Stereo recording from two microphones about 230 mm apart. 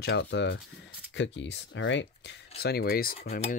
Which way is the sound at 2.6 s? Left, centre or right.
Left.